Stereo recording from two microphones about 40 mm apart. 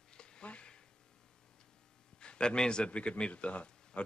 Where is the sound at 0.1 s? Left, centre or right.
Centre.